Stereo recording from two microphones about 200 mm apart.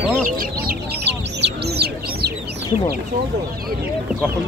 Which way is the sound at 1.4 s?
55° right (ahead or behind).